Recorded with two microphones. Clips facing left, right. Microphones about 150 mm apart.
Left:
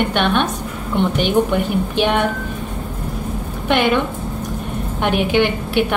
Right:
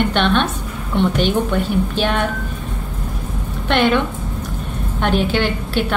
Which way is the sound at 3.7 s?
10° left (ahead or behind).